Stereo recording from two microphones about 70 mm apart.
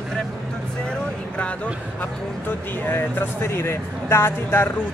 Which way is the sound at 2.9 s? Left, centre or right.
Left.